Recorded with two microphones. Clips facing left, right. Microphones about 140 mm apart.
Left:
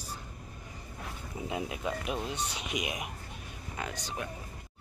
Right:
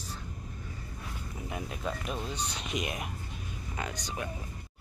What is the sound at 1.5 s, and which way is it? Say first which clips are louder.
Speech: left 2 dB; 15° left (ahead or behind).